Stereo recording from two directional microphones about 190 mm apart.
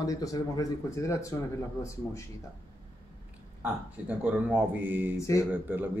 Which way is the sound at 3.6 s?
5° right (ahead or behind).